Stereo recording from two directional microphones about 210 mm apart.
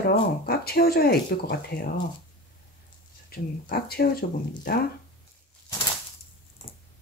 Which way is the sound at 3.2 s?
45° left (ahead or behind).